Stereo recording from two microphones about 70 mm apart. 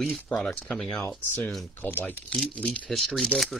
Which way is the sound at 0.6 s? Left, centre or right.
Centre.